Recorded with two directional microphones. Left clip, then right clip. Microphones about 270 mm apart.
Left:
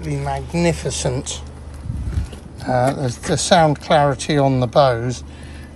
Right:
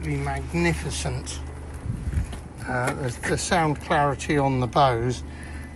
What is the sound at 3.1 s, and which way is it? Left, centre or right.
Speech, centre.